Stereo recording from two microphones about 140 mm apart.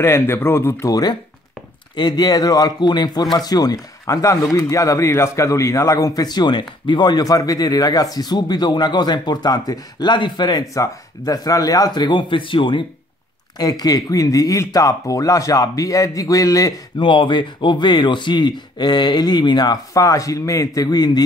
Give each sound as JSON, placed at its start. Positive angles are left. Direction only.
{"t": 0.0, "sound": "speech", "side_deg": 15}